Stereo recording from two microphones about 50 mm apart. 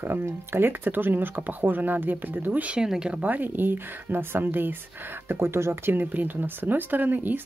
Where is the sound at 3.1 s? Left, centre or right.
Right.